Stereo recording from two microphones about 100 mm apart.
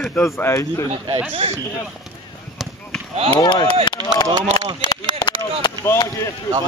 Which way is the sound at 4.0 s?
45° right (ahead or behind).